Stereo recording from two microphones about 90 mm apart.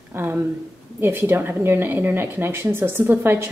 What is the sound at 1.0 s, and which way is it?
A woman's voice, 25° right (ahead or behind).